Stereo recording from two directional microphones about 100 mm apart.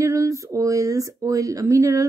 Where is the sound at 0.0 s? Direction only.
30° right (ahead or behind).